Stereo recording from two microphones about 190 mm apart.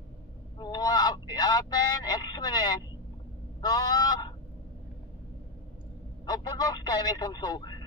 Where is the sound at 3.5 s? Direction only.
20° left (ahead or behind).